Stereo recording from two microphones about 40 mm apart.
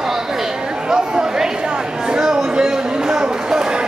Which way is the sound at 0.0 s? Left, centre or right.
Centre.